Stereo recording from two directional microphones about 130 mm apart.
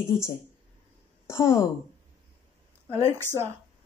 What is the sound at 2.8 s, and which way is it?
Speech, 20° right (ahead or behind).